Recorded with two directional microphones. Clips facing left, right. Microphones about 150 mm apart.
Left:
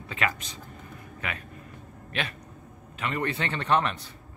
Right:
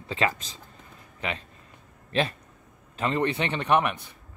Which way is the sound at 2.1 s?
30° right (ahead or behind).